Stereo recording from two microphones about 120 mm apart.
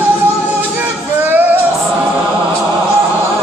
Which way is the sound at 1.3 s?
15° right (ahead or behind).